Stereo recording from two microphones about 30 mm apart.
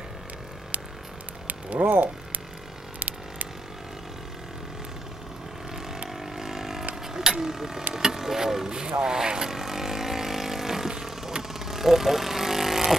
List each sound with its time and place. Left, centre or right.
0.7 s a sound: right
6.1 s vehicle: centre
7.2 s speech: centre
9.5 s vehicle: centre